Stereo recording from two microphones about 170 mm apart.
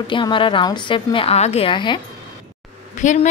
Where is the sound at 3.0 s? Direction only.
45° left (ahead or behind).